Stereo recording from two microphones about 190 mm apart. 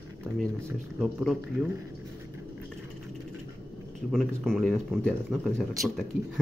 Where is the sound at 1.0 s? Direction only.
5° right (ahead or behind).